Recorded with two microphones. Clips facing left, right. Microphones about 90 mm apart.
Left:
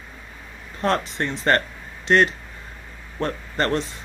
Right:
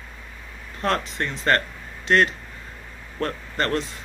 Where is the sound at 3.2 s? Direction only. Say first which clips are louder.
Left 2 dB; 25° left (ahead or behind).